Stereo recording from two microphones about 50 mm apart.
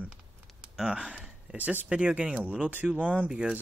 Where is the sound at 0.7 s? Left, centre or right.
Centre.